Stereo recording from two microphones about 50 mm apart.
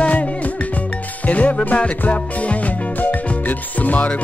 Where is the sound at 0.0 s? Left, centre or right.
Left.